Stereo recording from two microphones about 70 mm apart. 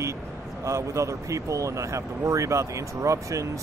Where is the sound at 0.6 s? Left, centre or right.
Right.